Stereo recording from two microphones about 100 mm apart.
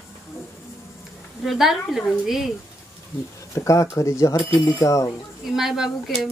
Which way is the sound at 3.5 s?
35° left (ahead or behind).